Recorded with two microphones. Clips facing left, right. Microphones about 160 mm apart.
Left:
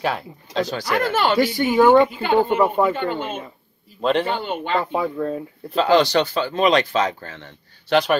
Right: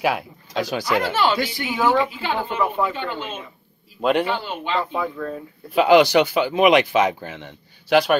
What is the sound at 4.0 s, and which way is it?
Speech, 5° right (ahead or behind).